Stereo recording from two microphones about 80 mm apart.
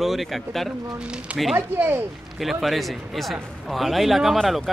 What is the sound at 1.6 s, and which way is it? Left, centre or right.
Speech, right.